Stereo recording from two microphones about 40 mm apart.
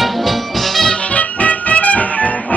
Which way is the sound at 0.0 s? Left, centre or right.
Centre.